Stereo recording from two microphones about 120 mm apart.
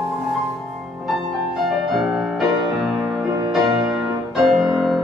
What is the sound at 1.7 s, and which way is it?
Music, centre (ahead or behind).